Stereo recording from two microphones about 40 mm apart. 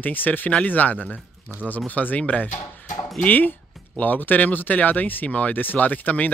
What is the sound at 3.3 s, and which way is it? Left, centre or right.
Speech, left.